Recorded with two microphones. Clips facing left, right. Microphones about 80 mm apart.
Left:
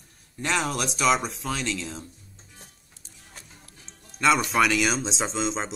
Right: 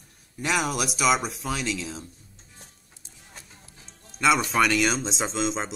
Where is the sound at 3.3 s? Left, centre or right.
Centre.